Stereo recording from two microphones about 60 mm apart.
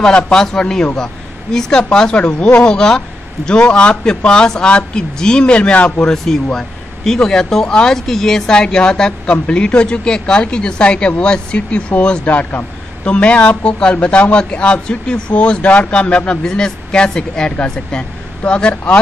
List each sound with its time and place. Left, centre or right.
0.0 s speech: centre
6.1 s speech: centre